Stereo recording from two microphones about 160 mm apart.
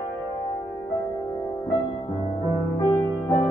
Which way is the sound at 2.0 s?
40° left (ahead or behind).